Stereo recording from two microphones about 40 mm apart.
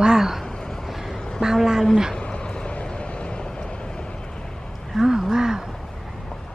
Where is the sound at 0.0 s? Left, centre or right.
Centre.